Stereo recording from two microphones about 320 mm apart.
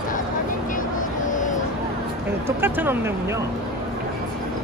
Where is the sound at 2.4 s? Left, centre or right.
Centre.